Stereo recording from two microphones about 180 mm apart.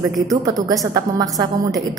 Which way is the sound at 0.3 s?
20° right (ahead or behind).